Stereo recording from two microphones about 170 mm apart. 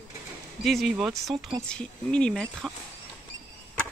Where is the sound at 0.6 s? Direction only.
Centre (ahead or behind).